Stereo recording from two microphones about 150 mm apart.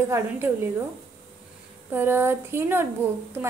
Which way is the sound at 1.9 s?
15° right (ahead or behind).